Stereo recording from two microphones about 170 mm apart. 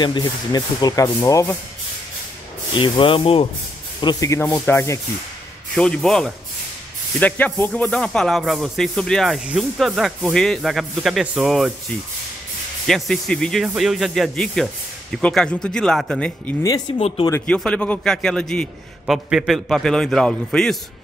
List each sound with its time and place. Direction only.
0.0 s speech: 25° left (ahead or behind)
2.7 s speech: 30° left (ahead or behind)
5.8 s speech: 5° left (ahead or behind)
12.8 s speech: centre (ahead or behind)
16.9 s speech: 35° left (ahead or behind)
17.5 s speech: 5° left (ahead or behind)